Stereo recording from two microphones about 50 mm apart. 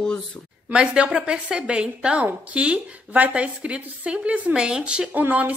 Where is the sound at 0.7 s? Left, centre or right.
Right.